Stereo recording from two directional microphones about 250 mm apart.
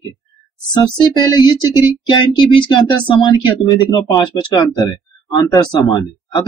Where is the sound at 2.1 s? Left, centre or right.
Centre.